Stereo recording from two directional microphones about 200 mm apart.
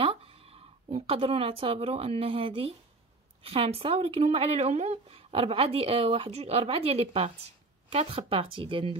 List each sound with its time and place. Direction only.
0.0 s speech: 25° right (ahead or behind)